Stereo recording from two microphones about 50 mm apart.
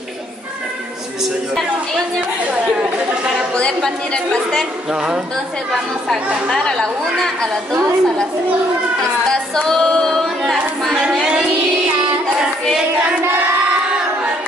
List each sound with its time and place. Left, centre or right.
3.8 s a woman's voice: centre
6.5 s a woman's voice: centre
9.6 s a woman's voice: centre